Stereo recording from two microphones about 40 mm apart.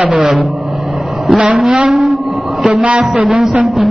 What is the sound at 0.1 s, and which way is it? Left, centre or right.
Speech, centre.